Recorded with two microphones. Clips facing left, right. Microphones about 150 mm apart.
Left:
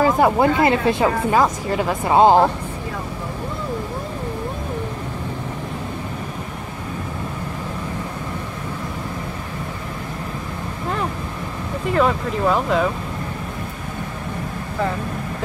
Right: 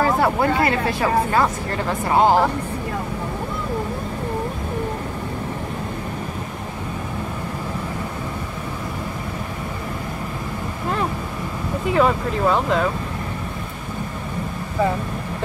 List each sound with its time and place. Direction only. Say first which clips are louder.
0.0 s speech: left 3 dB; 20° left (ahead or behind)
11.9 s speech: even; centre (ahead or behind)